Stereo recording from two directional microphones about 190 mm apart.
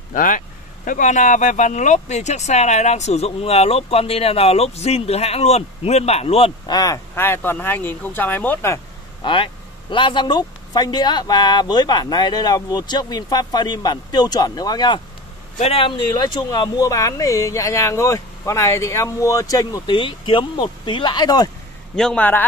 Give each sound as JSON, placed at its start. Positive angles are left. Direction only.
{"t": 0.1, "sound": "speech", "side_deg": 45}
{"t": 6.8, "sound": "speech", "side_deg": 15}
{"t": 9.2, "sound": "speech", "side_deg": 25}
{"t": 15.5, "sound": "speech", "side_deg": 30}
{"t": 21.9, "sound": "speech", "side_deg": 5}